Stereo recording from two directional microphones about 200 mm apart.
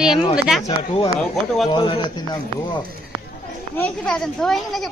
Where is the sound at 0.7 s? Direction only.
25° left (ahead or behind).